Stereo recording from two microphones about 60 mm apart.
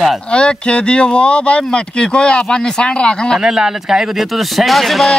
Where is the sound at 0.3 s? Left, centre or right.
Centre.